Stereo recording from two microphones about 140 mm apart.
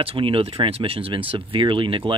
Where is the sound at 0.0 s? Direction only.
40° right (ahead or behind).